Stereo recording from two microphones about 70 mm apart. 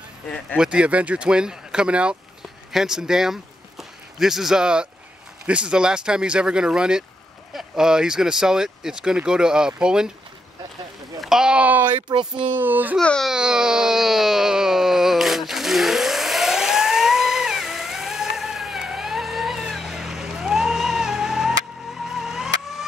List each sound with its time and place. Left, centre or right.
0.6 s speech: centre
11.1 s a sound: centre
11.6 s a child's voice: right
12.1 s speech: right
12.5 s a child's voice: right
13.3 s a sound: centre